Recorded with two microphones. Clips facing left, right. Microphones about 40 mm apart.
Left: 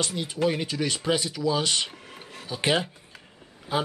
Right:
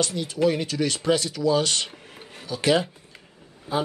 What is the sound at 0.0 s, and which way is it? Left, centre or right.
Speech, left.